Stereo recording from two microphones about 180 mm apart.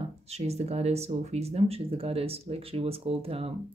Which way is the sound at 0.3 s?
35° right (ahead or behind).